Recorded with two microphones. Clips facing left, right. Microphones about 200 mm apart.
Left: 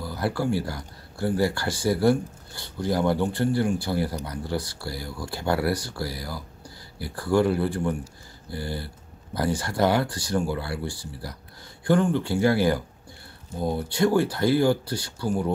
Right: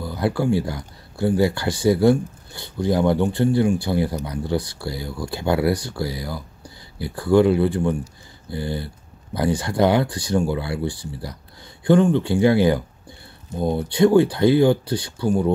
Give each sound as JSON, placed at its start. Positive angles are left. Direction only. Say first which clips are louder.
{"t": 0.0, "sound": "speech", "louder": "right 4 dB", "side_deg": -20}